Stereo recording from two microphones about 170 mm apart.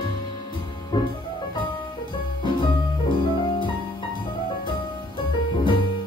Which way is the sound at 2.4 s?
30° left (ahead or behind).